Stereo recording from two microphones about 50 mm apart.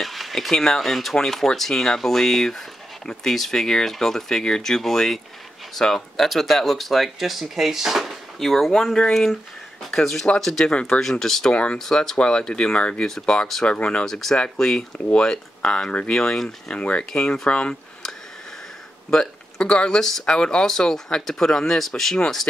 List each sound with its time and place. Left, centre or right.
0.0 s speech: centre
10.7 s speech: centre
11.0 s speech: centre
11.5 s speech: left
11.8 s speech: centre
14.0 s speech: centre; by 17.7 s left
19.0 s speech: centre